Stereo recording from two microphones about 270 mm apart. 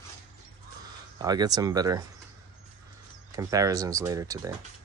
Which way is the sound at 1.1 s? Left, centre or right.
Centre.